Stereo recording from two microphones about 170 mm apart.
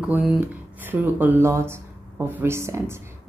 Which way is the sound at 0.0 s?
5° right (ahead or behind).